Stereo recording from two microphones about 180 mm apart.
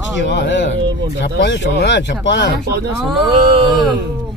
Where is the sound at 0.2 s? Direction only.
75° left (ahead or behind).